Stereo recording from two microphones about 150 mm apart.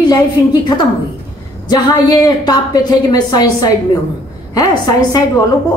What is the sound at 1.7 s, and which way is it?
A woman's voice, 25° left (ahead or behind).